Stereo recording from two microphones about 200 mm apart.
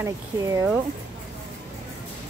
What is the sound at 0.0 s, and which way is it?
Speech, 10° right (ahead or behind).